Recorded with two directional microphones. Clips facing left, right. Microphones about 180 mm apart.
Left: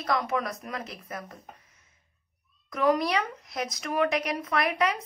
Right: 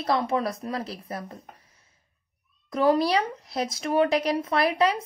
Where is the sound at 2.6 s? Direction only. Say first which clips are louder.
Right 3 dB; 30° right (ahead or behind).